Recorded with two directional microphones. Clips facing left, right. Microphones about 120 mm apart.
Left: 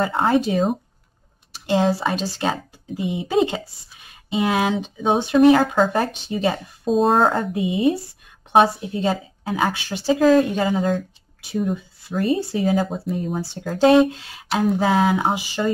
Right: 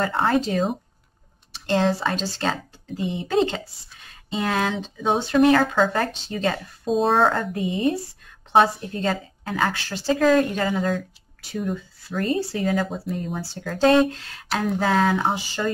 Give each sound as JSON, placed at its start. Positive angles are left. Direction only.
{"t": 0.0, "sound": "a woman's voice", "side_deg": 10}
{"t": 1.7, "sound": "a woman's voice", "side_deg": 10}
{"t": 6.9, "sound": "a woman's voice", "side_deg": 0}